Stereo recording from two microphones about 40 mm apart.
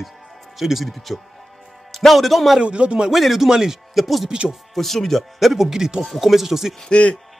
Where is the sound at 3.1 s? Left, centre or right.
Centre.